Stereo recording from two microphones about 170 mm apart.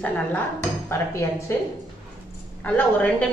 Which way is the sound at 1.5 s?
15° left (ahead or behind).